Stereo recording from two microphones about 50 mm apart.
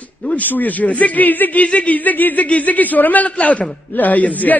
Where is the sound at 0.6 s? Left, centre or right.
Left.